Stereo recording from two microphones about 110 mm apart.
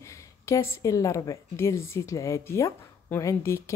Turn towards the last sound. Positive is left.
turn(degrees=25)  # may be behind; listen again after turning